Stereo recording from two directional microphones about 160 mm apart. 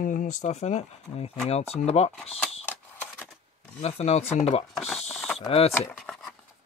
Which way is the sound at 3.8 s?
40° left (ahead or behind).